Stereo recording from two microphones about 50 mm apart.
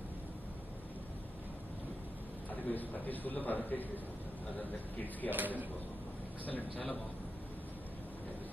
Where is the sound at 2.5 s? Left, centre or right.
Left.